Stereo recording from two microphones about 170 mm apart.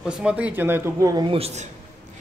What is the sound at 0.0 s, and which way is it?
Speech, 5° right (ahead or behind).